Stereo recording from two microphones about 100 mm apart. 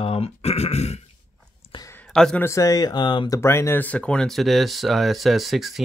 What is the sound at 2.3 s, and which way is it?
Speech, 30° left (ahead or behind).